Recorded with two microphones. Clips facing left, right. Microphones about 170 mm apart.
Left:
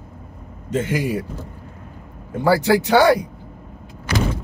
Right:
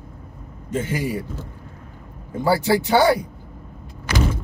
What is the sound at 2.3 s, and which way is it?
Speech, 70° left (ahead or behind).